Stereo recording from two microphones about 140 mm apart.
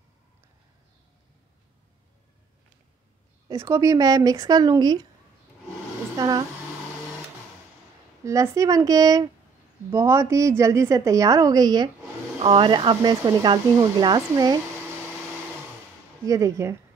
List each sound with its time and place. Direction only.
3.4 s a woman's voice: 20° right (ahead or behind)
6.1 s speech: 30° right (ahead or behind)
8.3 s a woman's voice: 25° right (ahead or behind)
16.3 s a woman's voice: 25° right (ahead or behind)